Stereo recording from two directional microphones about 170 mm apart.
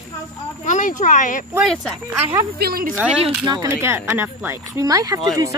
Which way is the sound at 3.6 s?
15° right (ahead or behind).